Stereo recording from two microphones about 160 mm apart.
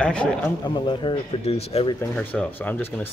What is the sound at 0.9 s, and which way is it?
Speech, 35° left (ahead or behind).